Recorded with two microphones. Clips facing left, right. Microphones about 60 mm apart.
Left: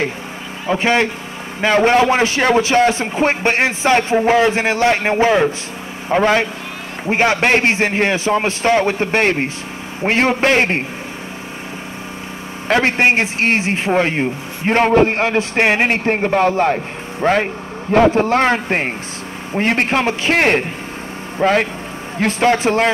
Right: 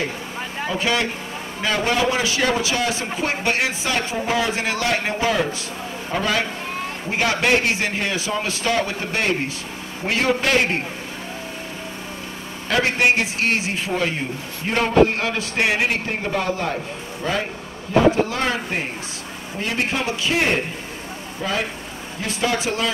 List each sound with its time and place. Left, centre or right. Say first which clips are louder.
0.7 s a man's voice: left 7 dB; left
12.6 s a man's voice: left 4 dB; left